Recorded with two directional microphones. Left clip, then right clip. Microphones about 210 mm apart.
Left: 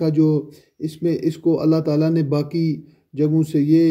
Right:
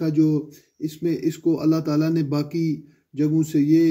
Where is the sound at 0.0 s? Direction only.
10° left (ahead or behind).